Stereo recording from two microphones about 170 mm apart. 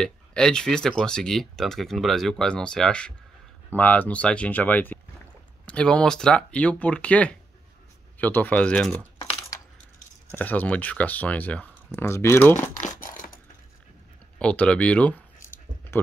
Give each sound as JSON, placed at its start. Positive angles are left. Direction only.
{"t": 0.0, "sound": "speech", "side_deg": 5}
{"t": 10.3, "sound": "speech", "side_deg": 10}
{"t": 12.8, "sound": "a sound", "side_deg": 55}
{"t": 14.4, "sound": "speech", "side_deg": 5}